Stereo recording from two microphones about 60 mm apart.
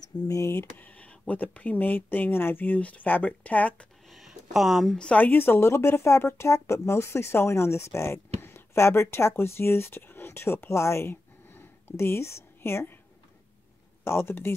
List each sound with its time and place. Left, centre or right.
0.0 s speech: left
0.7 s speech: left
4.1 s a sound: centre
5.1 s speech: left
14.0 s speech: left